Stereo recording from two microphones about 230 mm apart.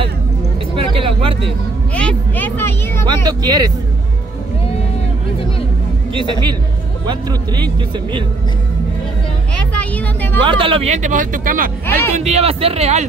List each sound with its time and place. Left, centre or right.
0.7 s vehicle: right
2.0 s a sound: centre
3.3 s speech: centre
7.1 s speech: centre
9.8 s vehicle: centre
10.4 s speech: right
11.8 s speech: centre
12.2 s speech: right